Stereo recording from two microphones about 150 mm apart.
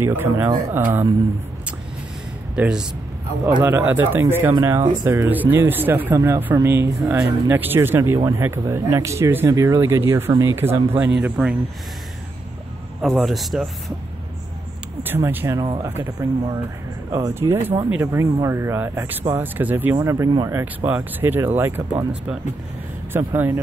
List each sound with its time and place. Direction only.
0.0 s speech: 15° right (ahead or behind)
2.5 s speech: 5° right (ahead or behind)
13.0 s speech: centre (ahead or behind)
15.0 s speech: 15° right (ahead or behind)